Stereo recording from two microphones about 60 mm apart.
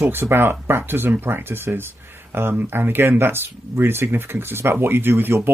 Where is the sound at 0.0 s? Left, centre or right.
Right.